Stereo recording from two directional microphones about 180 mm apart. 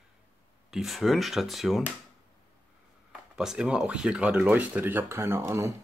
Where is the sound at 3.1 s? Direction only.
5° right (ahead or behind).